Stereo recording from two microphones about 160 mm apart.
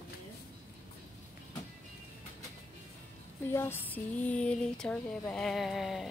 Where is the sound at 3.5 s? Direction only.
15° left (ahead or behind); by 6.1 s centre (ahead or behind).